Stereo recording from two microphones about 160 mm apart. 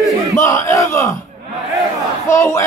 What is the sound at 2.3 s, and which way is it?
Speech, 15° left (ahead or behind).